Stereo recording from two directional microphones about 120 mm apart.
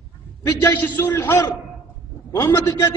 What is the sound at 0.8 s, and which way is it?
A man's voice, 20° left (ahead or behind).